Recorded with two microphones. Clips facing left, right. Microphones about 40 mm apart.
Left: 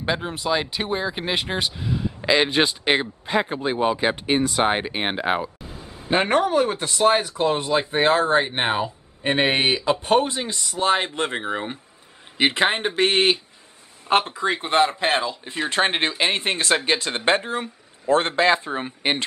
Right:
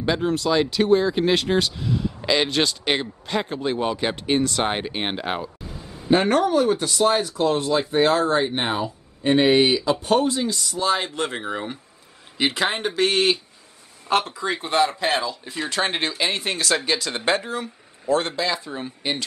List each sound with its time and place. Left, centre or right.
0.0 s speech: centre; by 19.2 s left